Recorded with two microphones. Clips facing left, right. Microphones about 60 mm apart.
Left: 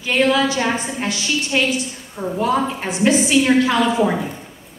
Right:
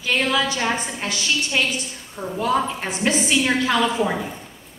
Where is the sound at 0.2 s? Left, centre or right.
Centre.